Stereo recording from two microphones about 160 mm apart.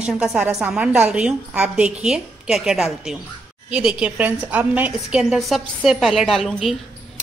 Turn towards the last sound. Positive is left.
turn(degrees=0)  # may be behind; listen again after turning